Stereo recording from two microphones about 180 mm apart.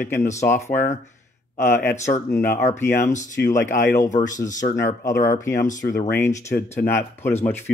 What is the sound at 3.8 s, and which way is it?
Speech, 45° left (ahead or behind).